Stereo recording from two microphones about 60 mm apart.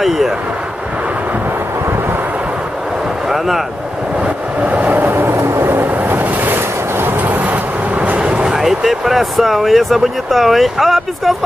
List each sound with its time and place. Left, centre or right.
3.3 s speech: centre
4.6 s vehicle: right
8.5 s speech: centre